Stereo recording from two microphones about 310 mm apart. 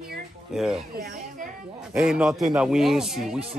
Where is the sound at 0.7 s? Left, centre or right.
Right.